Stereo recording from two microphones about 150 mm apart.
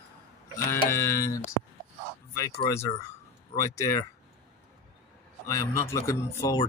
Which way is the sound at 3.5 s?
20° left (ahead or behind).